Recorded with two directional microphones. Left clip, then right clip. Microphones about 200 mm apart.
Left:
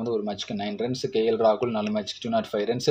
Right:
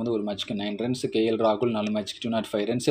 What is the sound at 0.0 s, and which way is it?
Speech, 30° right (ahead or behind).